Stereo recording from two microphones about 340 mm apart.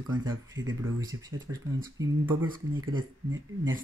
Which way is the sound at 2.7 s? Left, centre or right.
Right.